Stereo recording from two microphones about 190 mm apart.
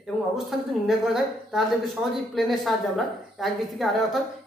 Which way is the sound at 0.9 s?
Centre (ahead or behind).